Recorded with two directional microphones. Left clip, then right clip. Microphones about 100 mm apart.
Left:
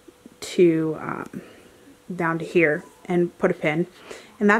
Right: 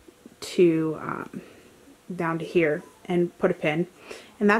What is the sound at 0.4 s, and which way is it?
Speech, centre (ahead or behind).